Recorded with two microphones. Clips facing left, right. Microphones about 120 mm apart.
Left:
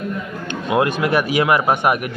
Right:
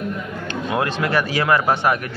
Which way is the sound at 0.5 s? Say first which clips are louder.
Left 4 dB; 20° left (ahead or behind).